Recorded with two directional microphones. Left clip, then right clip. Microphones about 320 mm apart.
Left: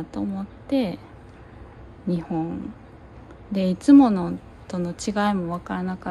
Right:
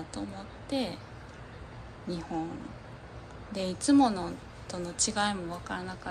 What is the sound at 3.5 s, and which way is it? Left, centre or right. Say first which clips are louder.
A woman's voice: left 10 dB; centre.